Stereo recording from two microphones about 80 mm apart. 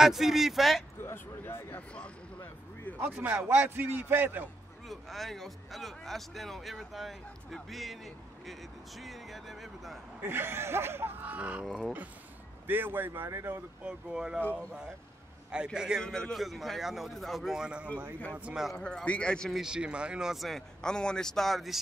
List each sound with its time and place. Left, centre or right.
0.0 s a man's voice: centre
1.0 s speech: left
3.0 s speech: right
4.8 s a man's voice: centre
10.2 s speech: right
13.8 s speech: centre
15.5 s speech: centre
16.0 s a man's voice: centre
18.8 s a man's voice: centre
19.5 s a man's voice: centre